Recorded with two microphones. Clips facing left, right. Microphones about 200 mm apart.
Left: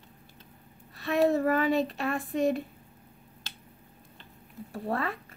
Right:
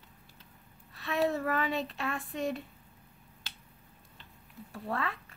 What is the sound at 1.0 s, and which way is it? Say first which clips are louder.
Speech: left 6 dB; 40° left (ahead or behind).